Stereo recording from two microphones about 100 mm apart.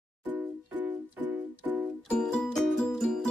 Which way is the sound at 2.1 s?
5° left (ahead or behind).